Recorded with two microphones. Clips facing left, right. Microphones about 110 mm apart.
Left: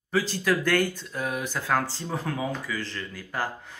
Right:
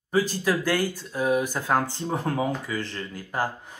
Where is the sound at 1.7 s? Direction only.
30° right (ahead or behind).